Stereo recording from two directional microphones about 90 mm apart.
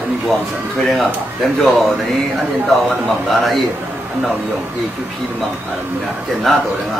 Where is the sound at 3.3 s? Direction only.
Centre (ahead or behind).